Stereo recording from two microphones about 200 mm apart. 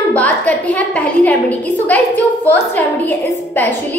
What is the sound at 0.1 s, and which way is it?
A woman's voice, 5° left (ahead or behind).